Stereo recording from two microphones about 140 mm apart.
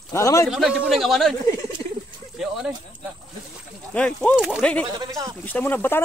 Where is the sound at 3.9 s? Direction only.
10° left (ahead or behind).